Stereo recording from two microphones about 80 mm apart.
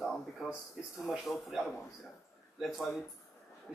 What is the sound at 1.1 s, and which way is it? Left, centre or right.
Speech, centre.